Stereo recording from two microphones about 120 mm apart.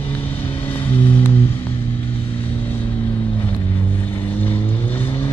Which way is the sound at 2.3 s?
15° left (ahead or behind).